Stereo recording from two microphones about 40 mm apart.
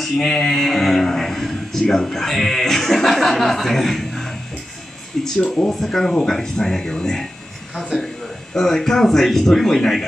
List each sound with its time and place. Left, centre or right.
0.0 s a man's voice: centre
8.5 s speech: centre